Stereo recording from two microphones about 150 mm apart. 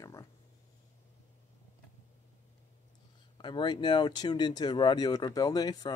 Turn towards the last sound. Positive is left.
turn(degrees=25)  # may be behind; listen again after turning